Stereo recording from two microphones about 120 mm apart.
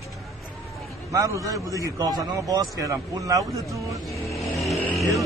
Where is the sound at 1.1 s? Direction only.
25° right (ahead or behind).